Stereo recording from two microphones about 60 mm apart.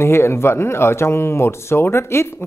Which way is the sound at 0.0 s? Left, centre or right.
Left.